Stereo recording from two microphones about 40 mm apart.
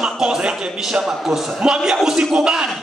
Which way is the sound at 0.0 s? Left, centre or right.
Centre.